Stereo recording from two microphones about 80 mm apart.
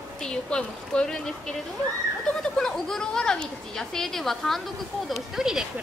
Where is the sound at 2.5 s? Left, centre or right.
Centre.